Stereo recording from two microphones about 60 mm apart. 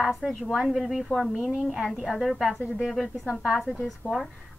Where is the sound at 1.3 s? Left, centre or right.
Centre.